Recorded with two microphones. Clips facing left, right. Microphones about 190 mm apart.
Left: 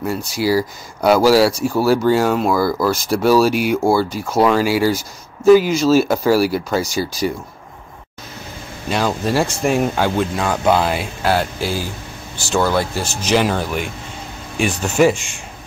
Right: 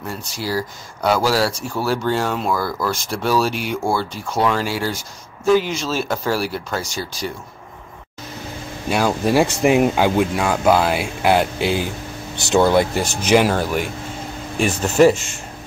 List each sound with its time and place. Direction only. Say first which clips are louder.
0.4 s speech: left 7 dB; 10° left (ahead or behind)
8.8 s speech: right 1 dB; 10° right (ahead or behind)
11.2 s speech: right 2 dB; 20° right (ahead or behind)
13.3 s speech: right 2 dB; 10° right (ahead or behind)